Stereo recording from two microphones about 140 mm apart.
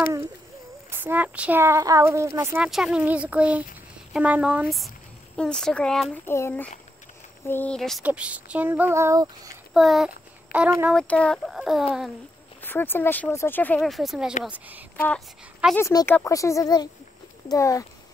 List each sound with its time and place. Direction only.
0.8 s speech: 15° right (ahead or behind)
2.6 s speech: 5° right (ahead or behind)
6.2 s speech: 20° left (ahead or behind)
7.7 s speech: 5° left (ahead or behind)
8.0 s speech: 10° right (ahead or behind); by 9.5 s 25° right (ahead or behind)
9.8 s a child's voice: centre (ahead or behind)
11.0 s speech: 10° left (ahead or behind)
12.6 s speech: 15° left (ahead or behind)
13.8 s speech: centre (ahead or behind)
16.1 s speech: 20° left (ahead or behind)